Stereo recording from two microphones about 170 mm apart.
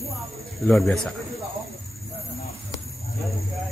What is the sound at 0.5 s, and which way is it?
Speech, centre (ahead or behind).